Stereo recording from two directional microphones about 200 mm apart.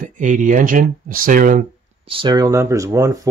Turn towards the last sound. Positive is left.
turn(degrees=-15)  # may be behind; listen again after turning